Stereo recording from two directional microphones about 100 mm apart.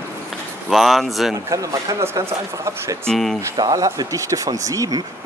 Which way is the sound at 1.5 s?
35° right (ahead or behind).